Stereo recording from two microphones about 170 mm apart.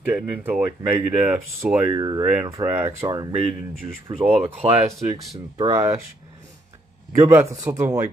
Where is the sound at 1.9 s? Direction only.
20° right (ahead or behind).